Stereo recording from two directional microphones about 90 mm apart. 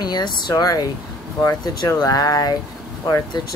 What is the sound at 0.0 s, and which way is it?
Speech, 55° left (ahead or behind).